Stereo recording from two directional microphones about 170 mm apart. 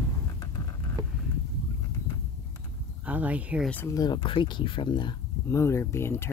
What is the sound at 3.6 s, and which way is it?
Speech, 15° left (ahead or behind).